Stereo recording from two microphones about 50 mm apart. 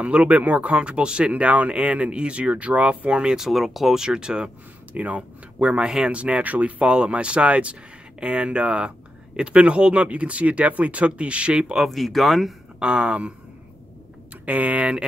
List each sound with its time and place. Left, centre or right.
0.0 s speech: right
3.3 s speech: centre
4.9 s speech: right
5.9 s speech: centre
6.1 s speech: right
11.7 s speech: centre
12.7 s speech: centre
14.4 s speech: right